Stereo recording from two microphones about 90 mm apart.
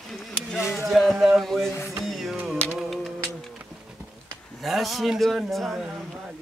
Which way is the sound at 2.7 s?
Centre (ahead or behind).